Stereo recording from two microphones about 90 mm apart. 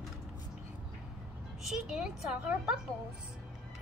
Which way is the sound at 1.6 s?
5° right (ahead or behind).